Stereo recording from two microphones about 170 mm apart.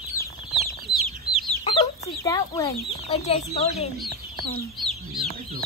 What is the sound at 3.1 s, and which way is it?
Speech, 35° left (ahead or behind).